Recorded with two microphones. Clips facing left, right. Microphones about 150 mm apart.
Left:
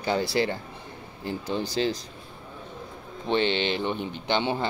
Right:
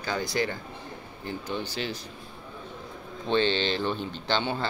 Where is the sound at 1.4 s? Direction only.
35° left (ahead or behind).